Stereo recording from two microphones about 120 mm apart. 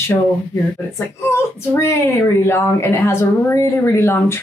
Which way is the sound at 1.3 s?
20° left (ahead or behind).